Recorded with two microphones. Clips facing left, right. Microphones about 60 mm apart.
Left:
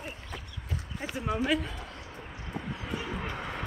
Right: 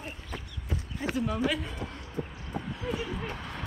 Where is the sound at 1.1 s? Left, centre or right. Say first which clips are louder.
Even; left.